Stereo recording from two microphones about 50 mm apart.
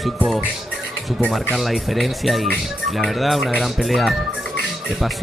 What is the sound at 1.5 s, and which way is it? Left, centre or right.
Speech, centre.